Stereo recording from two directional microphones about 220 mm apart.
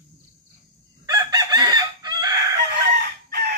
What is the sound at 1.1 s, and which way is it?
Chicken, 15° right (ahead or behind).